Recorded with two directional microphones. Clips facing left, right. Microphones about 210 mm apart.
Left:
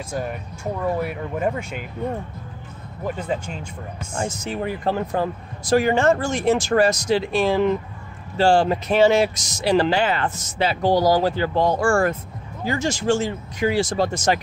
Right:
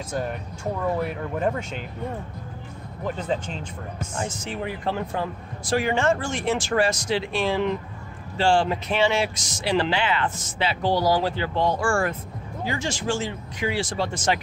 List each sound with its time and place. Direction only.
0.1 s speech: 5° left (ahead or behind)
3.1 s speech: 10° left (ahead or behind)
4.2 s speech: 40° left (ahead or behind)